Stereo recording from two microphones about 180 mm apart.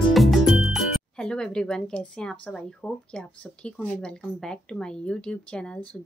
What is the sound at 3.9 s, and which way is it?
Speech, 5° left (ahead or behind).